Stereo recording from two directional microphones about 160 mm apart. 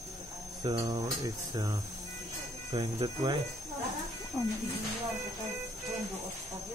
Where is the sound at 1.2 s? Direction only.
25° right (ahead or behind).